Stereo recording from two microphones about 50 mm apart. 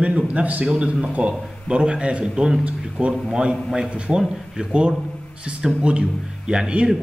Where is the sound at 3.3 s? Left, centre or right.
Centre.